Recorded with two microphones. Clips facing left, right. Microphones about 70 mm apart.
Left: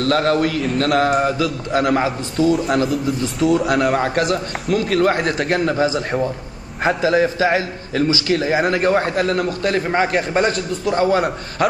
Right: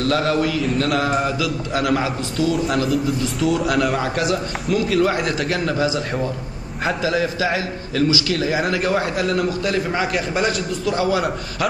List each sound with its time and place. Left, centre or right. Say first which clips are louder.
0.0 s a man's voice: left 2 dB; left
2.5 s a man's voice: left 2 dB; centre
4.0 s a man's voice: left 2 dB; left